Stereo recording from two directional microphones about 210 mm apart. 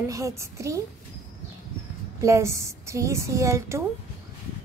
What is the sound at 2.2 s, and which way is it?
A woman's voice, 15° right (ahead or behind).